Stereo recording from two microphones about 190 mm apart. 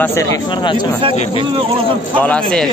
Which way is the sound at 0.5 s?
25° left (ahead or behind).